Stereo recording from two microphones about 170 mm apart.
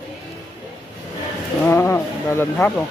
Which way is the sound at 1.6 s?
15° left (ahead or behind).